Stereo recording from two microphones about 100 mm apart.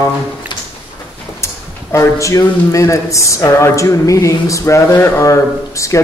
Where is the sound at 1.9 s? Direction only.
30° left (ahead or behind).